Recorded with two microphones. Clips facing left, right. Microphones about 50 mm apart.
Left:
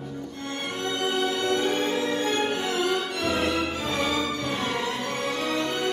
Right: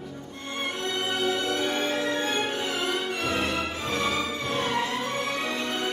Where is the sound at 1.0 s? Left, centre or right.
Centre.